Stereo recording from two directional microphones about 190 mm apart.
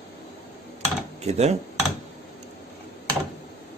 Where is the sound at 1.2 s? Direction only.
35° right (ahead or behind).